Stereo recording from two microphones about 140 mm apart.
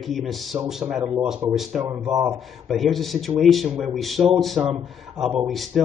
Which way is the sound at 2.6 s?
Centre (ahead or behind).